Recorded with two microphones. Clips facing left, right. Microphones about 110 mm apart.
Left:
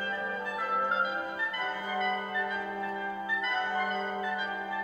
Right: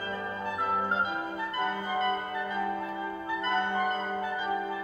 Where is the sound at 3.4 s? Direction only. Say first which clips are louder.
Right 4 dB; 45° right (ahead or behind).